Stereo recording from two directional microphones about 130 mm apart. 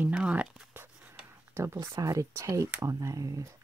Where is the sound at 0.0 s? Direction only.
10° right (ahead or behind).